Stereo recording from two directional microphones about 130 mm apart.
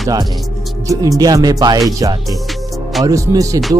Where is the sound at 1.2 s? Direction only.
30° right (ahead or behind).